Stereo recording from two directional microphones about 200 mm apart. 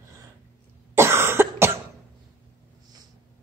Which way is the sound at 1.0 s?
10° right (ahead or behind).